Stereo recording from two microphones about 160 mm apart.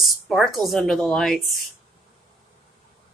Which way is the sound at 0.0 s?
Centre (ahead or behind).